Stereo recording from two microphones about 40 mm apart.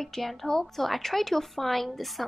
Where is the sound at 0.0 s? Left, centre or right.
Centre.